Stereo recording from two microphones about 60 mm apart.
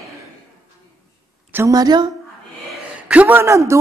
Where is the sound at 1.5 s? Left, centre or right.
Right.